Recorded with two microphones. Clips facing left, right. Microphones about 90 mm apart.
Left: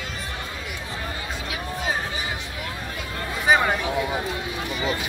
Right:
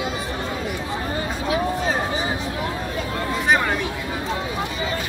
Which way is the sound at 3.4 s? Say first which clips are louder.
Left 1 dB; 5° left (ahead or behind).